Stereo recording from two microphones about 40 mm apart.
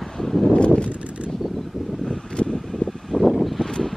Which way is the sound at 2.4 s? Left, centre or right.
Centre.